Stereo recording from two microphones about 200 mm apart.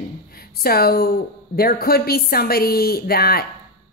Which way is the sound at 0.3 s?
50° left (ahead or behind).